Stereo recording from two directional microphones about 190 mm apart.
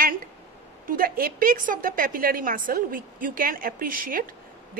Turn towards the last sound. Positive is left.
turn(degrees=-45)  # may be behind; listen again after turning